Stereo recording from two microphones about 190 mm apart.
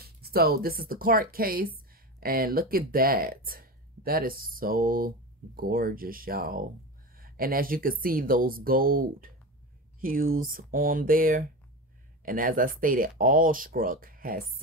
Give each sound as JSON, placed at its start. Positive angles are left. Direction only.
{"t": 0.0, "sound": "speech", "side_deg": -55}